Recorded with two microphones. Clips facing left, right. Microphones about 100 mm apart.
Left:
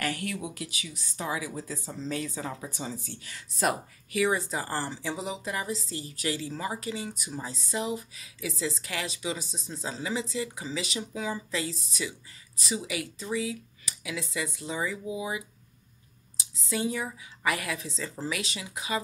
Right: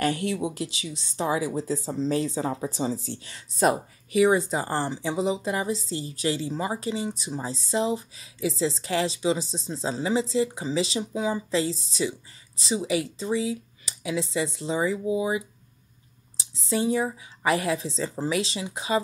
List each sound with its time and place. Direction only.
0.0 s speech: 25° right (ahead or behind)